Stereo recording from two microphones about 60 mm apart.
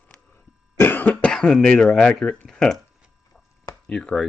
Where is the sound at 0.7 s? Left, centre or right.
Left.